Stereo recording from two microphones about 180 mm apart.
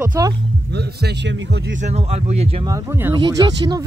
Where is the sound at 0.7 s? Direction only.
70° right (ahead or behind).